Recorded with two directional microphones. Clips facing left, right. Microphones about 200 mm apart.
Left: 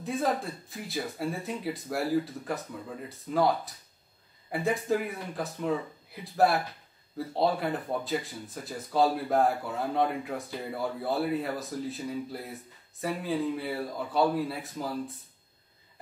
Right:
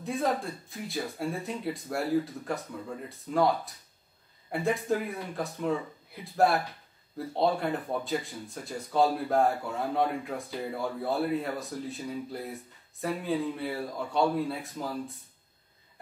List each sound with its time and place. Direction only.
0.0 s speech: centre (ahead or behind)